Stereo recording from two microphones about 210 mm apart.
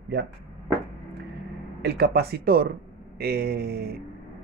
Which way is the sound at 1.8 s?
50° right (ahead or behind).